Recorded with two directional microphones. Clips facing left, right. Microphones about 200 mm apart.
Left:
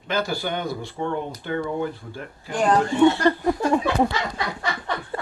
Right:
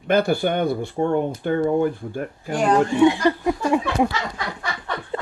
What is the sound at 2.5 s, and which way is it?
Speech, 10° right (ahead or behind).